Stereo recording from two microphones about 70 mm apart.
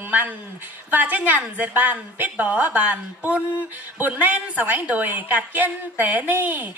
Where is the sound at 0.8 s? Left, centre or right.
Right.